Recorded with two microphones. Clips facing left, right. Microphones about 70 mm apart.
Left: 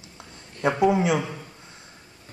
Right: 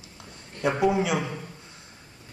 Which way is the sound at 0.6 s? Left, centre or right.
Left.